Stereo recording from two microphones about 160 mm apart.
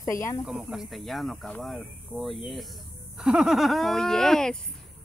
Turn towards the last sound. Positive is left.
turn(degrees=5)  # may be behind; listen again after turning